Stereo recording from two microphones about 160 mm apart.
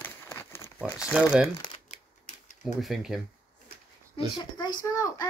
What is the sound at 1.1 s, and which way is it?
Speech, 5° right (ahead or behind).